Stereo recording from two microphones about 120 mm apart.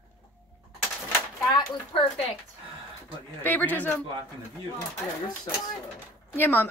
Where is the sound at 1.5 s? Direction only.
35° left (ahead or behind).